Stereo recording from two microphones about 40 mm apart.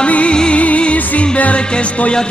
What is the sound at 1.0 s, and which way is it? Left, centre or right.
Music, left.